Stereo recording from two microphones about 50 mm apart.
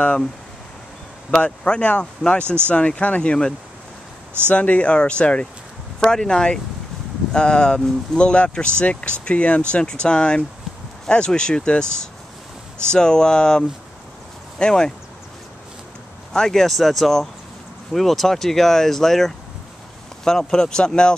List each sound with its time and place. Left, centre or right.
1.4 s speech: left
4.5 s speech: left
16.3 s speech: centre